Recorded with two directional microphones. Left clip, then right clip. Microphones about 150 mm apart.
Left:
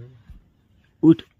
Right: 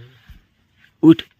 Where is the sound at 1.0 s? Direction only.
10° right (ahead or behind).